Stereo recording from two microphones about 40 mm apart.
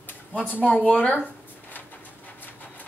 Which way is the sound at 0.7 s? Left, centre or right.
Left.